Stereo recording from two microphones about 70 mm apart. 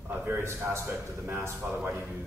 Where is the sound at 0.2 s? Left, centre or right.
Right.